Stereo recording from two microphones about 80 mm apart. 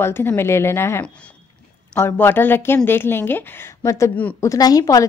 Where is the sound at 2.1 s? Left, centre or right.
Left.